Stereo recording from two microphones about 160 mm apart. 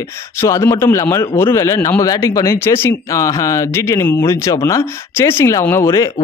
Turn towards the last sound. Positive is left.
turn(degrees=20)  # may be behind; listen again after turning